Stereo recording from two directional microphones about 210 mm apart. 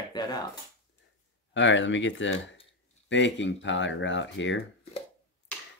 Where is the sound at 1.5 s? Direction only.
60° left (ahead or behind).